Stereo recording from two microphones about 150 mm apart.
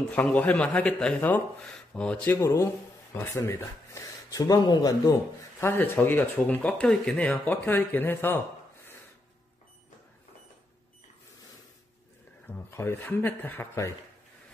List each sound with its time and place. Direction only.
0.1 s speech: 10° left (ahead or behind)
2.2 s speech: 20° left (ahead or behind)
12.4 s speech: 15° left (ahead or behind)